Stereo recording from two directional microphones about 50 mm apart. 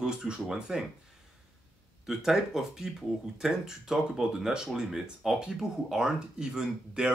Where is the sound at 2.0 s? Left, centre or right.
Centre.